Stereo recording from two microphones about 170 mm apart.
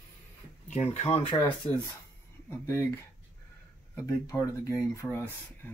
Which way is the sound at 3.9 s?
15° left (ahead or behind).